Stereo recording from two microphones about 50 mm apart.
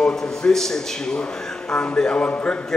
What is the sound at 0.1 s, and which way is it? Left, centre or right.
A man's voice, centre.